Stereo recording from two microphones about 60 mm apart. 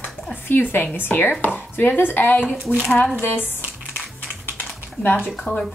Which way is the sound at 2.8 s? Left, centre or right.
Centre.